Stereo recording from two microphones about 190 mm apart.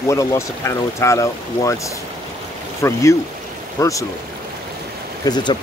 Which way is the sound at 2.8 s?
15° left (ahead or behind).